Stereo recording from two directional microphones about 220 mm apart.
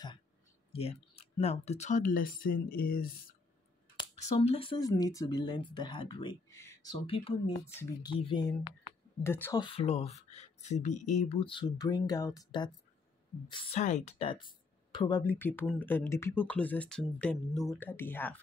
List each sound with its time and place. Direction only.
0.7 s speech: 25° left (ahead or behind)
3.9 s speech: 25° left (ahead or behind); by 18.4 s 10° left (ahead or behind)